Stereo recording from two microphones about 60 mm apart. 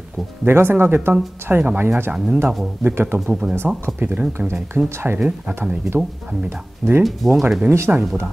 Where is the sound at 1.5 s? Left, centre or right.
Right.